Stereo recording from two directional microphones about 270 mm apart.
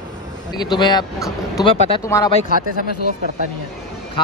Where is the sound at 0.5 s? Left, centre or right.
Centre.